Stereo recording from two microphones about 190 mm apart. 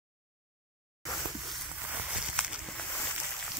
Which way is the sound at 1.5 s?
Centre (ahead or behind).